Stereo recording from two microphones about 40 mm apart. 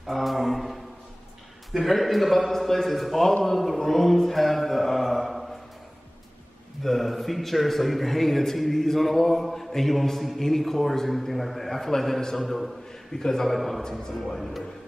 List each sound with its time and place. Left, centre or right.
0.0 s a man's voice: centre
3.4 s mantra: centre
6.8 s a man's voice: centre
13.1 s a man's voice: centre
13.8 s a man's voice: centre